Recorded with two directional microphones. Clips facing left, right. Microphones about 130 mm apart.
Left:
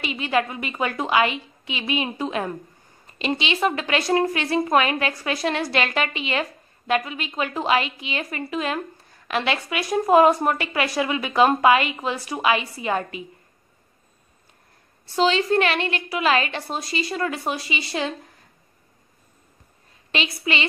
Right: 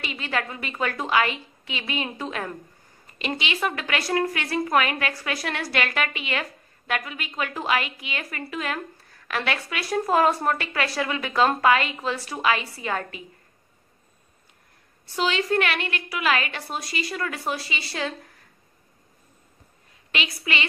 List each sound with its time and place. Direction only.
0.0 s a woman's voice: 20° left (ahead or behind)
15.1 s a woman's voice: 30° left (ahead or behind)
20.1 s a woman's voice: 30° left (ahead or behind)